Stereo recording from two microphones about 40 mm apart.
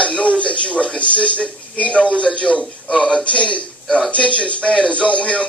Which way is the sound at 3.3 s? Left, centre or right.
Left.